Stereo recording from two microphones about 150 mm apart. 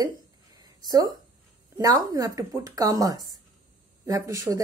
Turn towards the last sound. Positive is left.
turn(degrees=-20)  # may be behind; listen again after turning